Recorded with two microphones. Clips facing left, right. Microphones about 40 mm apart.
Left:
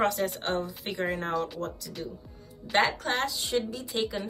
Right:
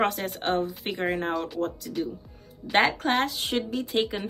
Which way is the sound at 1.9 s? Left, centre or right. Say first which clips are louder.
Right 9 dB; centre.